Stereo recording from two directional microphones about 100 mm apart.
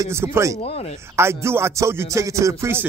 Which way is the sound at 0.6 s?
90° left.